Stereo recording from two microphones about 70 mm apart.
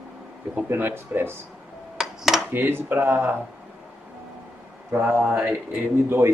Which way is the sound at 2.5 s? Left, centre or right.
Right.